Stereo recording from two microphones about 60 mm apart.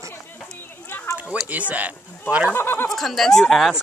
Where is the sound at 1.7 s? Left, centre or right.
Right.